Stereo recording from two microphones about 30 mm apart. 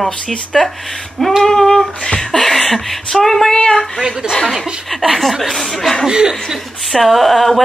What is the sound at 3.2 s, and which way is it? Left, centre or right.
Speech, centre.